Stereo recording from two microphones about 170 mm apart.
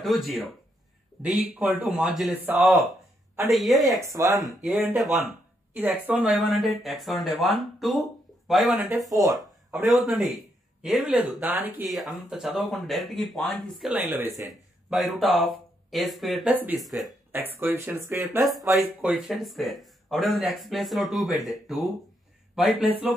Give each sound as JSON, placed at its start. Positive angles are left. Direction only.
{"t": 0.0, "sound": "speech", "side_deg": 0}
{"t": 3.4, "sound": "speech", "side_deg": 0}
{"t": 4.0, "sound": "speech", "side_deg": -20}
{"t": 8.8, "sound": "speech", "side_deg": -20}
{"t": 9.4, "sound": "speech", "side_deg": -5}
{"t": 14.4, "sound": "speech", "side_deg": 0}
{"t": 17.3, "sound": "speech", "side_deg": -10}
{"t": 18.4, "sound": "speech", "side_deg": 0}